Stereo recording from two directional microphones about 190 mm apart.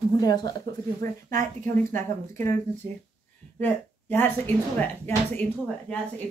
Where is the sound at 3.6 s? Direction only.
10° left (ahead or behind).